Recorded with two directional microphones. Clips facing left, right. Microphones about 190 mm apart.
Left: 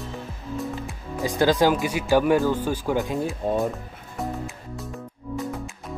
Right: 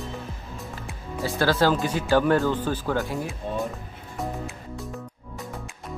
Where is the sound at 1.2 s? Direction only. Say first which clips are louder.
Left 2 dB; 15° left (ahead or behind).